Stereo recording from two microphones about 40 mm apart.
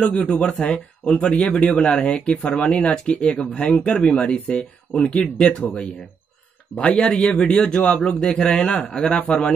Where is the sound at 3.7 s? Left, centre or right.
Left.